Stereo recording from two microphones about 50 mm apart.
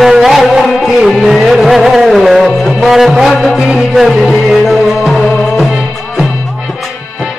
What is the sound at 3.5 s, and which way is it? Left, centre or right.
Music, centre.